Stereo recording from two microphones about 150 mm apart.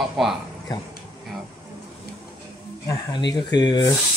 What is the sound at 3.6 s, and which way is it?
Speech, 30° left (ahead or behind).